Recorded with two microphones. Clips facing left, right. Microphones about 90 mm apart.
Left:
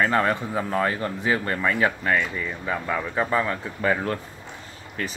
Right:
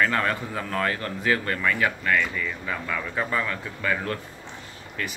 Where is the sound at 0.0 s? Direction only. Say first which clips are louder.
Left 2 dB; 25° left (ahead or behind).